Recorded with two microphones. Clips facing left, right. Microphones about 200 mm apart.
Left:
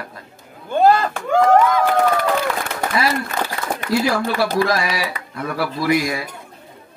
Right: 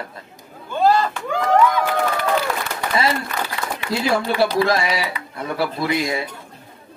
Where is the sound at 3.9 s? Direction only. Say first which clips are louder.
Left 1 dB; 25° right (ahead or behind).